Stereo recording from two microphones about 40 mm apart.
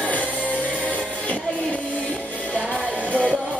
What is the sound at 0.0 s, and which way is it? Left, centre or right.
Music, left.